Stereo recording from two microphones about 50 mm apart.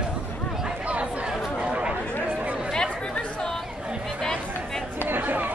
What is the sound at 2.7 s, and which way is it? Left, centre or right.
Chatter, centre.